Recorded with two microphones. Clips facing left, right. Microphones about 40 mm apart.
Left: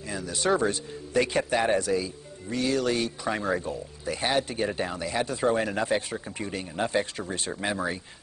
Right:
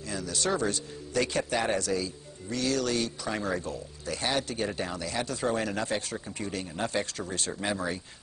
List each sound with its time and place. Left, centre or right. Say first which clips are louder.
0.1 s speech: left 4 dB; centre